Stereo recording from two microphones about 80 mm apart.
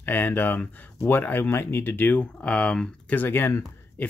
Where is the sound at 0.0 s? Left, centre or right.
Left.